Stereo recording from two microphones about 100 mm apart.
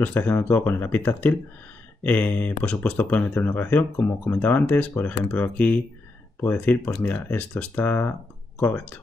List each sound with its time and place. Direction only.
0.0 s speech: 20° left (ahead or behind)